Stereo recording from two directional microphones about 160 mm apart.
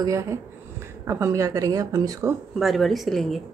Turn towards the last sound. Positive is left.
turn(degrees=0)  # may be behind; listen again after turning